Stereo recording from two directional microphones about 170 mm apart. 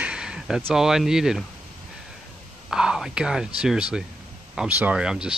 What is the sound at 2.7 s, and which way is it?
Speech, 5° right (ahead or behind).